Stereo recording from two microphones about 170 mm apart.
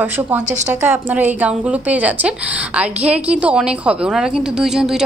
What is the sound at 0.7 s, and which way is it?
A woman's voice, 10° right (ahead or behind).